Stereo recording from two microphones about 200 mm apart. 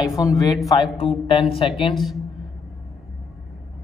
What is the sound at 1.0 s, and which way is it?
Speech, 30° left (ahead or behind).